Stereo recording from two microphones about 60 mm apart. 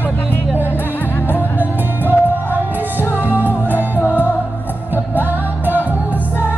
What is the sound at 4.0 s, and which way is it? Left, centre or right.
Music, left.